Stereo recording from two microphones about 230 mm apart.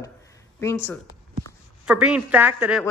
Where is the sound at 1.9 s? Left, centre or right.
Centre.